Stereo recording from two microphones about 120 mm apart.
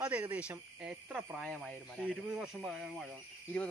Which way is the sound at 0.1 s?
10° right (ahead or behind).